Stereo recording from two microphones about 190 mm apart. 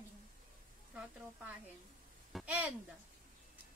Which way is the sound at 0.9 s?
5° right (ahead or behind).